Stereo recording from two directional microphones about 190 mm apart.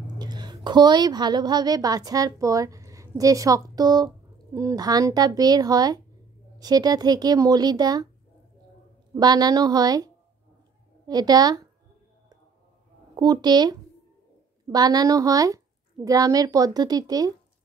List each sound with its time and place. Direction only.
0.0 s a woman's voice: 20° right (ahead or behind)
9.1 s a woman's voice: 20° right (ahead or behind)
13.1 s a woman's voice: 20° right (ahead or behind)